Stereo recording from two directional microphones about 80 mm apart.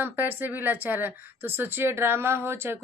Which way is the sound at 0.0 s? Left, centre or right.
Right.